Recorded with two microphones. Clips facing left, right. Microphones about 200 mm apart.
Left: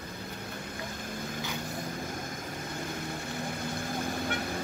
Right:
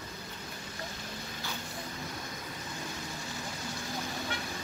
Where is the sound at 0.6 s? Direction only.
55° left (ahead or behind).